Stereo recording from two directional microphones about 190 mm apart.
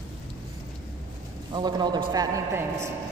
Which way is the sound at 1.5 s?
20° right (ahead or behind).